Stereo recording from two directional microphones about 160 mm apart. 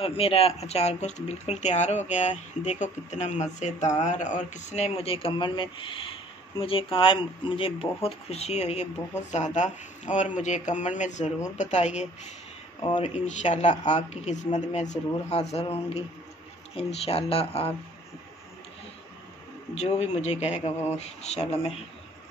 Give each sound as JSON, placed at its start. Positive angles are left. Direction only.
{"t": 0.0, "sound": "speech", "side_deg": 40}
{"t": 13.0, "sound": "speech", "side_deg": 45}
{"t": 19.7, "sound": "speech", "side_deg": 45}